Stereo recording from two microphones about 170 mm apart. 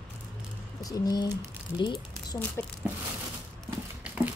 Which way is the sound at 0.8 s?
20° left (ahead or behind).